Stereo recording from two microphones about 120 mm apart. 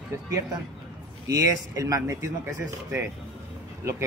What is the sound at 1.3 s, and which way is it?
Speech, 25° right (ahead or behind).